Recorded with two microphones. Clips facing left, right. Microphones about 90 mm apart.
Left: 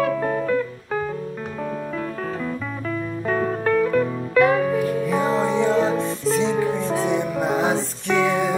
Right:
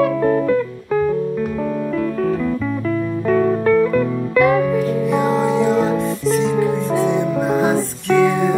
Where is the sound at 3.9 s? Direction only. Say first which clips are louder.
Right 2 dB; 35° left (ahead or behind).